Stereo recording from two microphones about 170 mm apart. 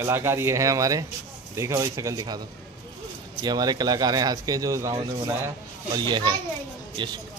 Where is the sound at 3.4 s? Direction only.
25° right (ahead or behind).